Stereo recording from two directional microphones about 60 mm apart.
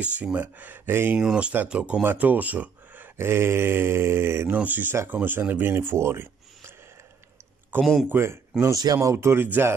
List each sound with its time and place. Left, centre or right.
0.0 s speech: right
1.2 s speech: centre
2.0 s speech: right
3.2 s mantra: right
4.6 s speech: right
7.7 s speech: right
8.1 s mantra: right
8.6 s mantra: right